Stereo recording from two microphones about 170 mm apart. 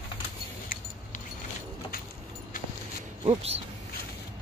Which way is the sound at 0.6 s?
55° left (ahead or behind).